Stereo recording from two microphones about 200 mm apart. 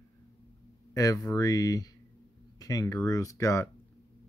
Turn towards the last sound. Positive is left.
turn(degrees=15)  # may be behind; listen again after turning